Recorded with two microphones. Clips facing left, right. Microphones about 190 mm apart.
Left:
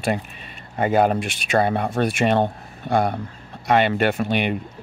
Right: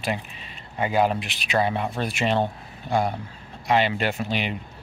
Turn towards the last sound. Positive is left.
turn(degrees=60)  # may be behind; listen again after turning